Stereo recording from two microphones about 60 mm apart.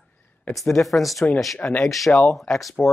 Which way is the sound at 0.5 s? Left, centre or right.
Centre.